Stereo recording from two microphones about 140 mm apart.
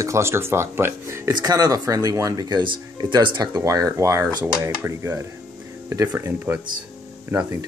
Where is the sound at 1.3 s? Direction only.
30° right (ahead or behind).